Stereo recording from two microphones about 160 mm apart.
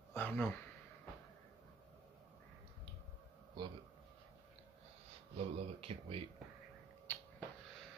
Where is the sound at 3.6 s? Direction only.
25° right (ahead or behind).